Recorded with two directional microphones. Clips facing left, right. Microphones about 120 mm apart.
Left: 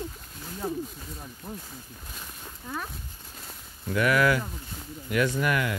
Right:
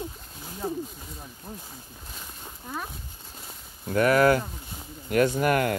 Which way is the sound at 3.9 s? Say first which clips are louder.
Right 3 dB; 40° right (ahead or behind).